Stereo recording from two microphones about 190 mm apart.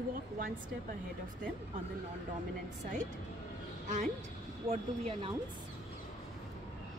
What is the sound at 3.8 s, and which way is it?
Speech, 40° right (ahead or behind).